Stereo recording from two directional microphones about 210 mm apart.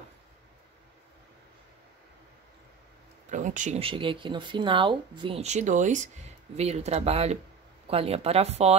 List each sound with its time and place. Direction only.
3.3 s speech: 35° right (ahead or behind)